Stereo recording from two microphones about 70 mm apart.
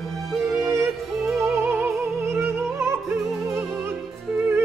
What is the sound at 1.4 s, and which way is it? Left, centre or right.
Music, right.